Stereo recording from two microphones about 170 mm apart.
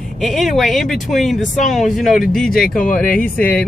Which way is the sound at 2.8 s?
50° left (ahead or behind).